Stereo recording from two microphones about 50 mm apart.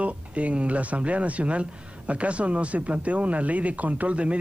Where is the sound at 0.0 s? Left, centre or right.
Right.